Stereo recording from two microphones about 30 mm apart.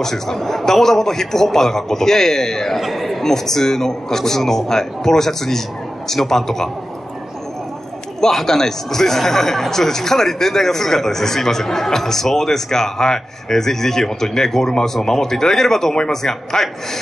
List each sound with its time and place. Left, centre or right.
0.0 s speech: centre
2.8 s speech: centre
8.2 s speech: centre